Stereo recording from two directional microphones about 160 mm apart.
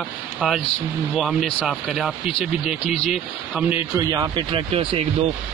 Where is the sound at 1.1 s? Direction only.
Centre (ahead or behind).